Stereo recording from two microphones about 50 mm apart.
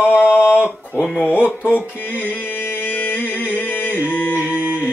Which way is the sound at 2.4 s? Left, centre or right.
Left.